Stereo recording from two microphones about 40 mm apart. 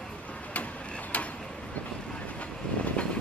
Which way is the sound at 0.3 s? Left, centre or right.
Left.